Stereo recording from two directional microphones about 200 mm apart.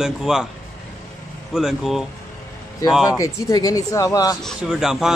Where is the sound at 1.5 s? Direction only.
Centre (ahead or behind).